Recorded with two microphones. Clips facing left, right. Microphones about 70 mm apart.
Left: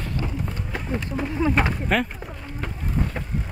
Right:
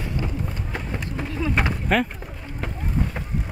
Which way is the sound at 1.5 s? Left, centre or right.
Centre.